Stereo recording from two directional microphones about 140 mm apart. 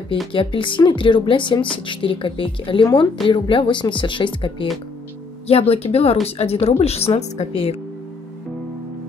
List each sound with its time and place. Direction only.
0.3 s a woman's voice: 35° left (ahead or behind)